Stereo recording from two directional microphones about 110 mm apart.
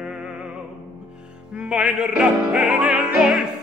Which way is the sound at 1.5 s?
10° right (ahead or behind).